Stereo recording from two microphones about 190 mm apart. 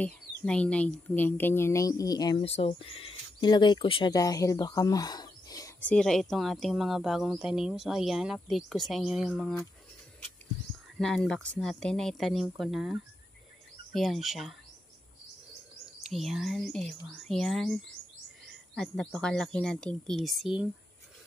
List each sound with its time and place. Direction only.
0.0 s a woman's voice: 5° left (ahead or behind)
5.9 s speech: 5° left (ahead or behind)
11.0 s speech: centre (ahead or behind)
16.1 s speech: centre (ahead or behind)